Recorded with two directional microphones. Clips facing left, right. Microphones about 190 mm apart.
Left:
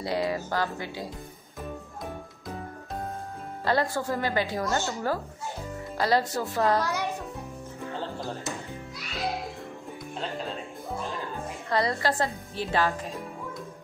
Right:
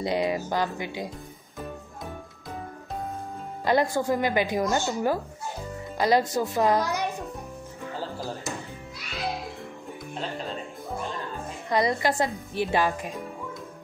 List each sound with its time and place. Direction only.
0.0 s a woman's voice: 20° right (ahead or behind)
3.6 s a woman's voice: 15° right (ahead or behind)
7.8 s music: centre (ahead or behind)
11.7 s a woman's voice: 15° right (ahead or behind)